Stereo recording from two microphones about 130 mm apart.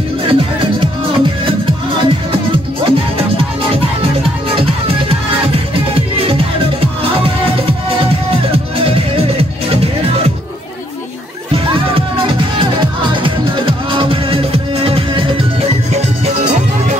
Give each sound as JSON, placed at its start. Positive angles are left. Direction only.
{"t": 0.3, "sound": "music", "side_deg": -45}
{"t": 5.9, "sound": "music", "side_deg": -45}
{"t": 11.5, "sound": "music", "side_deg": -45}
{"t": 15.9, "sound": "music", "side_deg": -65}